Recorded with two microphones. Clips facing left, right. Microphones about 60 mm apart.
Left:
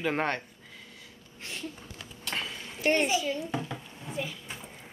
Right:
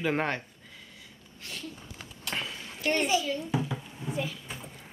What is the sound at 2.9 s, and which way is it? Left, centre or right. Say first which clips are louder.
Speech: left 1 dB; centre.